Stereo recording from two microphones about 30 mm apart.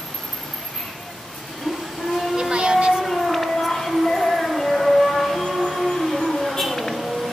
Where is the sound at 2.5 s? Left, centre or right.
Right.